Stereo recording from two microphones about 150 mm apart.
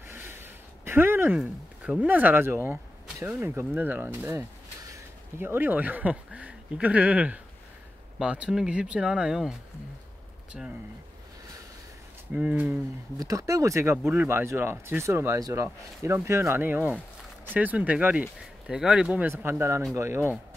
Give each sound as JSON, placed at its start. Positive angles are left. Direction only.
{"t": 0.0, "sound": "a sound", "side_deg": -15}
{"t": 1.4, "sound": "speech", "side_deg": -5}
{"t": 12.3, "sound": "speech", "side_deg": -10}
{"t": 13.2, "sound": "speech", "side_deg": -25}